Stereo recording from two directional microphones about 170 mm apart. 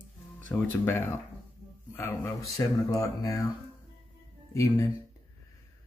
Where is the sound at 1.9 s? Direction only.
15° left (ahead or behind).